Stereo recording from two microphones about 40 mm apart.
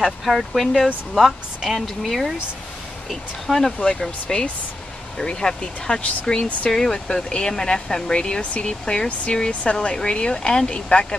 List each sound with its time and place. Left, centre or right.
0.0 s speech: centre; by 11.1 s left